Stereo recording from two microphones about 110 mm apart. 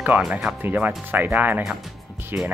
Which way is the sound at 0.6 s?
15° right (ahead or behind).